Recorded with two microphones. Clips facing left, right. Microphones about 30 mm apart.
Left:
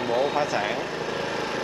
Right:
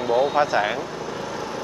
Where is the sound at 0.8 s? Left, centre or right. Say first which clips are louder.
Left 1 dB; left.